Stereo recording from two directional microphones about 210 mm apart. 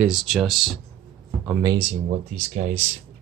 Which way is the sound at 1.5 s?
15° right (ahead or behind).